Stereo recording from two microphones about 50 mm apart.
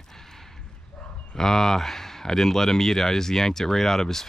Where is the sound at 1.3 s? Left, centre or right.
Centre.